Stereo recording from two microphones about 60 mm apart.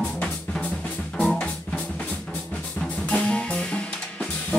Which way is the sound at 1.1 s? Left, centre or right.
Centre.